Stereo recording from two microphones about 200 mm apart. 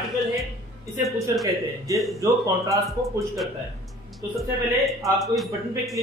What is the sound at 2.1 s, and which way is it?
Speech, 15° right (ahead or behind).